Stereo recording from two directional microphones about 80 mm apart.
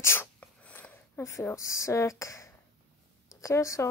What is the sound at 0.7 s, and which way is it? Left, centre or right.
Speech, left.